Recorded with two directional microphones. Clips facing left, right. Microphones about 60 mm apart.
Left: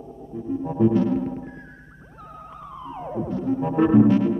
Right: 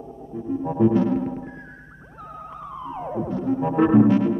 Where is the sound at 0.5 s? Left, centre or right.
Right.